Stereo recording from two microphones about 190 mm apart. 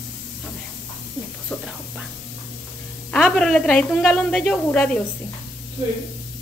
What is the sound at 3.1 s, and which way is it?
A woman's voice, 5° left (ahead or behind).